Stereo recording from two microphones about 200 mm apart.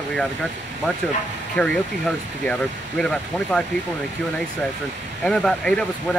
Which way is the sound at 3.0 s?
5° left (ahead or behind).